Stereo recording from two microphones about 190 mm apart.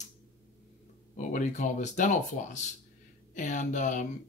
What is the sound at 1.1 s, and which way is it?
Speech, 40° left (ahead or behind).